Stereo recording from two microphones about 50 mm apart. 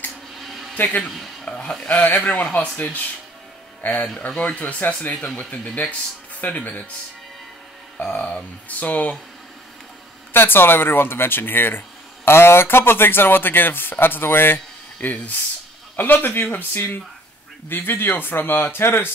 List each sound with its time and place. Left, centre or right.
0.4 s a sound: centre
1.4 s speech: centre
1.9 s speech: left
5.1 s speech: centre
8.2 s speech: left
10.3 s speech: left